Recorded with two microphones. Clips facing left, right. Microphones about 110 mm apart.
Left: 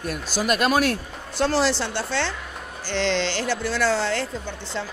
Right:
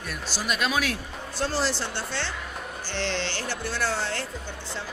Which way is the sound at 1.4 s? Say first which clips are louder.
Left 6 dB; 75° left (ahead or behind).